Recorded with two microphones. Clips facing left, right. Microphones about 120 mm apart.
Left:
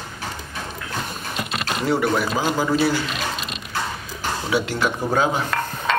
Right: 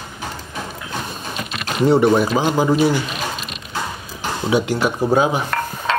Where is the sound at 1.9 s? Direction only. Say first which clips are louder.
Right 7 dB; 25° right (ahead or behind).